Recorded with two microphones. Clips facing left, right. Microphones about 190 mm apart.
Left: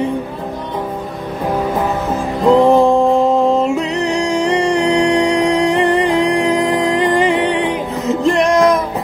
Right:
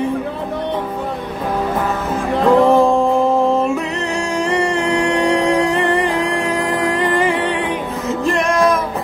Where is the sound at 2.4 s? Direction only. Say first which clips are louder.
Left 2 dB; 20° left (ahead or behind).